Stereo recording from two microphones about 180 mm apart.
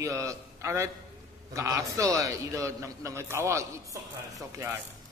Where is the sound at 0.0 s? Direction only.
15° right (ahead or behind).